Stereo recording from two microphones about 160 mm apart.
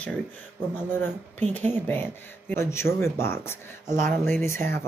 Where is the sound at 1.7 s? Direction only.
10° left (ahead or behind).